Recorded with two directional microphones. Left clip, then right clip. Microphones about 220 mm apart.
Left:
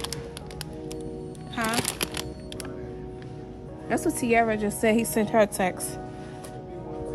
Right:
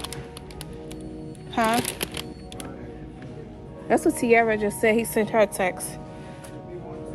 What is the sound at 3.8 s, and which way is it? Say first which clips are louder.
Music: right 5 dB; 10° left (ahead or behind).